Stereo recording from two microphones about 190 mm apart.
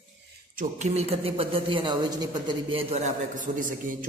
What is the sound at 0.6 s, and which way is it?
A man's voice, 35° right (ahead or behind).